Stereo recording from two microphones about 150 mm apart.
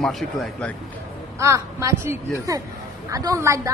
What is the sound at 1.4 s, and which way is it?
A woman's voice, 20° right (ahead or behind).